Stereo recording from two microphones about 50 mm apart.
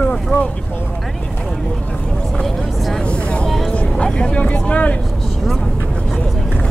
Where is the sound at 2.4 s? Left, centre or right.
Centre.